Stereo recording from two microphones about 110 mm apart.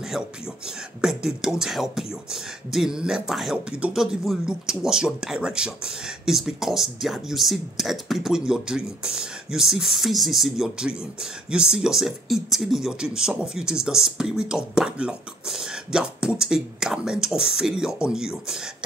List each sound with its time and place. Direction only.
1.0 s speech: 5° right (ahead or behind)